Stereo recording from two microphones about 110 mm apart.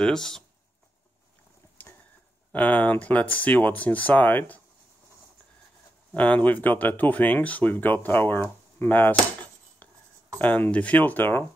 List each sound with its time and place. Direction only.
0.0 s speech: 5° left (ahead or behind)
1.8 s a sound: 15° left (ahead or behind)
2.5 s speech: 15° left (ahead or behind)
6.1 s speech: 15° left (ahead or behind)